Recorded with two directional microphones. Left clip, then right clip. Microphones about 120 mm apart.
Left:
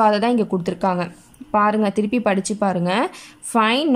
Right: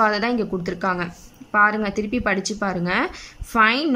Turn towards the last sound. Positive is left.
turn(degrees=30)  # may be behind; listen again after turning